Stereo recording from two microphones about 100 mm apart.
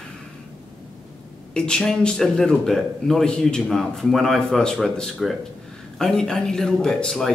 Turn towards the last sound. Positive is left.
turn(degrees=5)  # may be behind; listen again after turning